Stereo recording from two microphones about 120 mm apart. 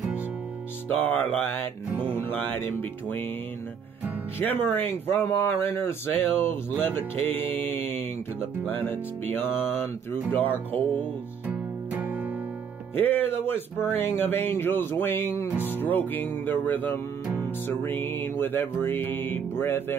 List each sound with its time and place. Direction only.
0.8 s speech: 15° left (ahead or behind)
4.4 s speech: 15° left (ahead or behind)
11.4 s music: 15° right (ahead or behind)
12.9 s speech: 15° left (ahead or behind)